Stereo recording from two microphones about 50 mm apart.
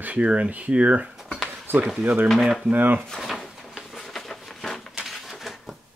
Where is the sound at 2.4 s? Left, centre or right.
Centre.